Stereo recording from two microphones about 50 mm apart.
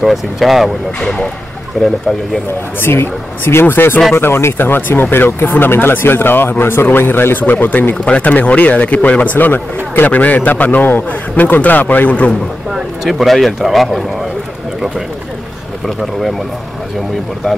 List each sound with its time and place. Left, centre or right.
0.0 s speech: centre
1.0 s speech: centre
2.8 s speech: left
4.2 s a man's voice: left
7.9 s a man's voice: left
12.7 s speech: centre